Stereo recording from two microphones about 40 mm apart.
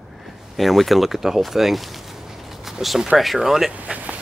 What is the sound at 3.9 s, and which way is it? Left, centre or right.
Speech, right.